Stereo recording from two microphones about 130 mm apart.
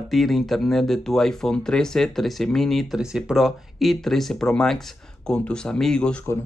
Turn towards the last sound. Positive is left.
turn(degrees=5)  # may be behind; listen again after turning